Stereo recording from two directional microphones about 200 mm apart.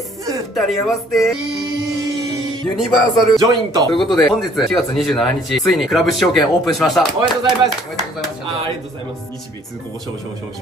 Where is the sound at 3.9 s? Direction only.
Centre (ahead or behind).